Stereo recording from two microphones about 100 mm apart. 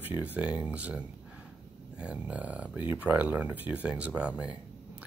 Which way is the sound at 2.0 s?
15° right (ahead or behind).